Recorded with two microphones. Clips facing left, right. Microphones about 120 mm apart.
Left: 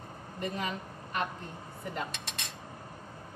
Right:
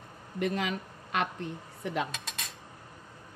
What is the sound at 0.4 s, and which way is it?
Speech, 85° right.